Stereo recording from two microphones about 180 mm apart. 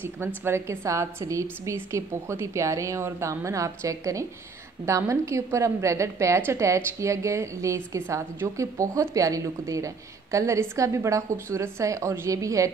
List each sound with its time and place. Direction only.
0.5 s a woman's voice: 15° right (ahead or behind)